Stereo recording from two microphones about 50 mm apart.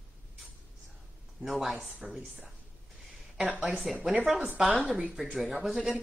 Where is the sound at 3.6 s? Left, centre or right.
Centre.